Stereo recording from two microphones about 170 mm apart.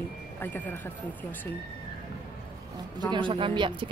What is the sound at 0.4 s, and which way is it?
Speech, 10° left (ahead or behind).